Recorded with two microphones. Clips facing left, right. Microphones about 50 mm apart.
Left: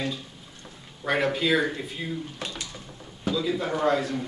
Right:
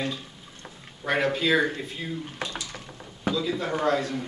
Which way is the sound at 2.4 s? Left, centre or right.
Right.